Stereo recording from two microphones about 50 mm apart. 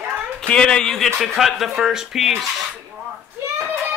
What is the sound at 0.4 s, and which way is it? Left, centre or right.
A man's voice, centre.